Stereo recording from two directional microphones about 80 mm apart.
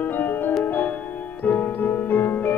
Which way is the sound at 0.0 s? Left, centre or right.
Left.